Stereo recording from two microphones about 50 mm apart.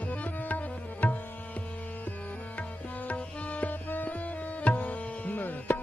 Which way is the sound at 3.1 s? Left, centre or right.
Left.